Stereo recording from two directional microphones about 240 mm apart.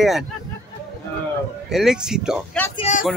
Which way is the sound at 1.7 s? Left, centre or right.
Centre.